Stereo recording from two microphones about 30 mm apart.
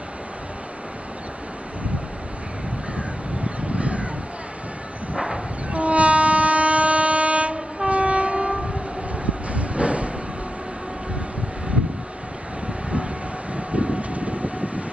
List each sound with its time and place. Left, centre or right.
3.0 s crow: right
5.1 s a sound: right
5.7 s train: right
9.2 s vehicle: right
13.5 s vehicle: right